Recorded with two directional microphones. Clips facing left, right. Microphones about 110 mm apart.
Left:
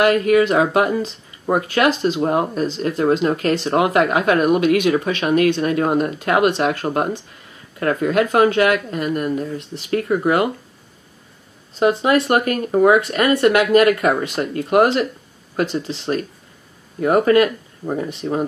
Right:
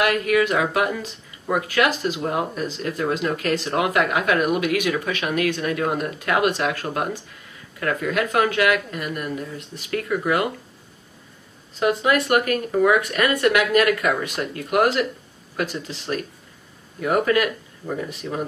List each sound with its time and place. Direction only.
0.0 s speech: 35° left (ahead or behind)
11.8 s speech: 25° left (ahead or behind)